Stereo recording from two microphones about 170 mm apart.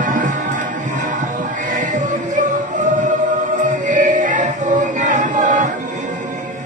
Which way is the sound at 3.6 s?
45° right (ahead or behind).